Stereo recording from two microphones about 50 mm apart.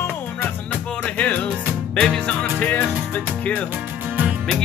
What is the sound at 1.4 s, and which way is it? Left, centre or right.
Music, centre.